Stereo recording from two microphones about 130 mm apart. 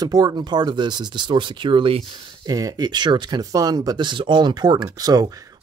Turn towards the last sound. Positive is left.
turn(degrees=-30)  # may be behind; listen again after turning